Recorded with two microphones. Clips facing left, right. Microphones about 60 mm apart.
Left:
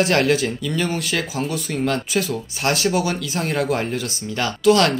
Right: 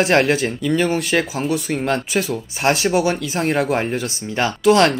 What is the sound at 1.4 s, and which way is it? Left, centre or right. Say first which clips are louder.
Speech: right 2 dB; right.